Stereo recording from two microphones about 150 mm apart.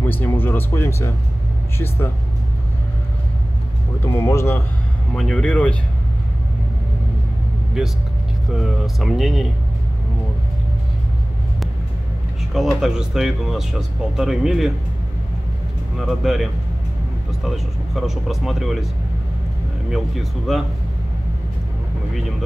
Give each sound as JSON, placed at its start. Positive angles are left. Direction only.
{"t": 0.0, "sound": "speech", "side_deg": 15}
{"t": 4.0, "sound": "speech", "side_deg": 20}
{"t": 5.1, "sound": "speech", "side_deg": 5}
{"t": 8.5, "sound": "speech", "side_deg": 0}
{"t": 12.5, "sound": "speech", "side_deg": 0}
{"t": 16.0, "sound": "speech", "side_deg": 0}
{"t": 17.5, "sound": "speech", "side_deg": 0}
{"t": 19.9, "sound": "speech", "side_deg": 0}